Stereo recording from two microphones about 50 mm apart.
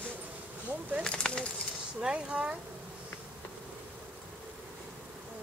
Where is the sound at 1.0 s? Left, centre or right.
Centre.